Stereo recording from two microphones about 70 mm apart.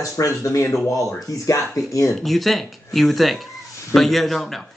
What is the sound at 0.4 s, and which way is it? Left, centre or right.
Speech, left.